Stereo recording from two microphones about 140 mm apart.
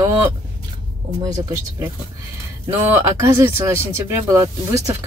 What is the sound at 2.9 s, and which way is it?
Speech, 20° right (ahead or behind).